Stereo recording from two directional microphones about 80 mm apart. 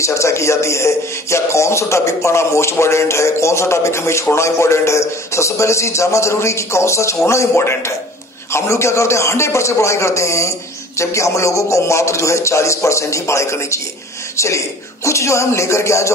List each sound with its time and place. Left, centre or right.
0.0 s a man's voice: left